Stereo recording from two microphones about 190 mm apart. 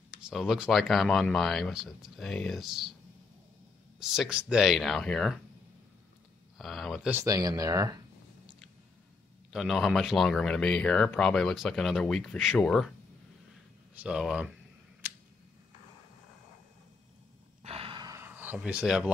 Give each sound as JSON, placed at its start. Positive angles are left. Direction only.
{"t": 0.3, "sound": "speech", "side_deg": 0}
{"t": 4.0, "sound": "speech", "side_deg": 0}
{"t": 6.6, "sound": "speech", "side_deg": 0}
{"t": 9.5, "sound": "speech", "side_deg": 0}
{"t": 14.0, "sound": "speech", "side_deg": -5}
{"t": 17.6, "sound": "gasp", "side_deg": -30}